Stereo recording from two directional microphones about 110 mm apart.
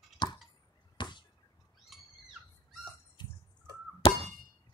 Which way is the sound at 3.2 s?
45° left (ahead or behind).